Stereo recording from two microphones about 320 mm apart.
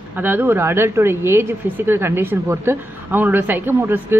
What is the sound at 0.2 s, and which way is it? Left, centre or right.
Speech, centre.